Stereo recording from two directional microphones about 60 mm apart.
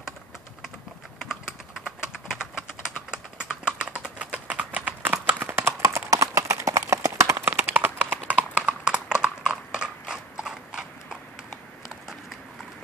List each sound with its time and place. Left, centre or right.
1.3 s typing: centre; by 5.6 s right
5.8 s clip-clop: right
7.3 s clip-clop: right
8.5 s clip-clop: centre